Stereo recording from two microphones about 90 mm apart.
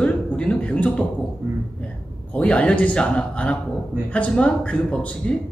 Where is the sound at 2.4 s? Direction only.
15° left (ahead or behind).